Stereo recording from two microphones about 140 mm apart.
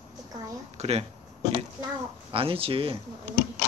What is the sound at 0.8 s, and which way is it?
Speech, 45° right (ahead or behind).